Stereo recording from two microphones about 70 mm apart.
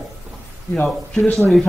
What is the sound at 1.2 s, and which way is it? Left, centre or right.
Speech, left.